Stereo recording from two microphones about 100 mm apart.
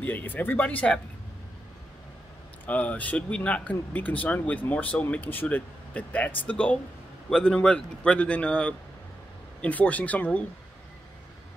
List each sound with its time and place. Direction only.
0.0 s speech: 20° left (ahead or behind)
2.6 s speech: 15° left (ahead or behind)